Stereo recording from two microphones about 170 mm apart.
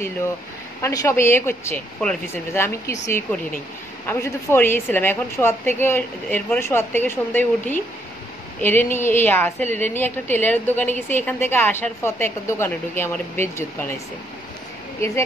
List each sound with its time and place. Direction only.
0.8 s a woman's voice: 15° left (ahead or behind)